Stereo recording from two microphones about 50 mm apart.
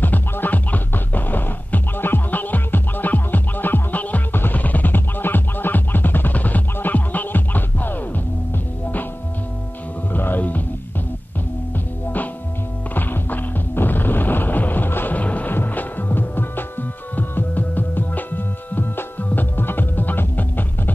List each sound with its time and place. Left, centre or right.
0.0 s music: left
10.1 s music: left
12.9 s music: left
15.1 s music: left